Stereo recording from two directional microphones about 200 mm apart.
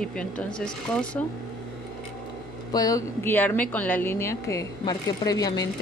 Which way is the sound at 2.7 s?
15° left (ahead or behind).